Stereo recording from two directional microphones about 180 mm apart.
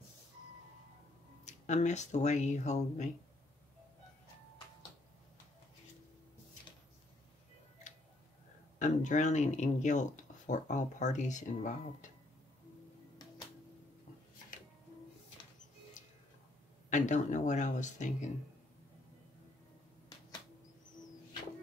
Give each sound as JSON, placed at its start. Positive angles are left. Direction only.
{"t": 1.4, "sound": "speech", "side_deg": 40}
{"t": 8.7, "sound": "speech", "side_deg": 40}
{"t": 16.0, "sound": "tick-tock", "side_deg": 45}
{"t": 16.9, "sound": "speech", "side_deg": 45}